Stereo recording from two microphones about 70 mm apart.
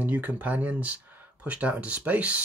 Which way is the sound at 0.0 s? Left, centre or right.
Right.